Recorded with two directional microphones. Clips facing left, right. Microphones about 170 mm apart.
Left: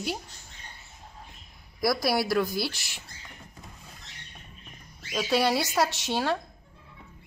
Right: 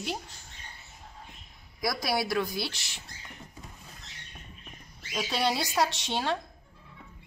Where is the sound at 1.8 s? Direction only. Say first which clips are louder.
Left 4 dB; 5° left (ahead or behind).